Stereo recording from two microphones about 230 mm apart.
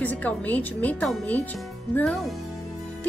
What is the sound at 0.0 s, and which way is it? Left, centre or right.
A woman's voice, centre.